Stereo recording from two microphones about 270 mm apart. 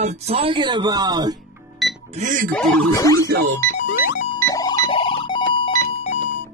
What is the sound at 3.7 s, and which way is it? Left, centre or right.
Music, left.